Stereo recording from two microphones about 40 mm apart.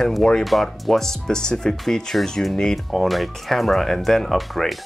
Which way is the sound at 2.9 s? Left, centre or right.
Centre.